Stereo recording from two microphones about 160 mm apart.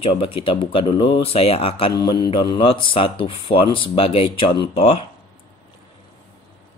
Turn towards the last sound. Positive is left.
turn(degrees=35)  # may be behind; listen again after turning